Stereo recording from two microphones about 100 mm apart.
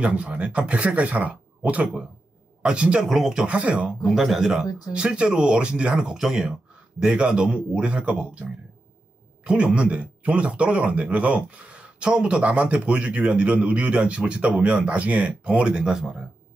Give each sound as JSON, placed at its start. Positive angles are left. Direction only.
{"t": 0.0, "sound": "speech", "side_deg": -10}
{"t": 4.6, "sound": "speech", "side_deg": 40}
{"t": 4.9, "sound": "speech", "side_deg": -10}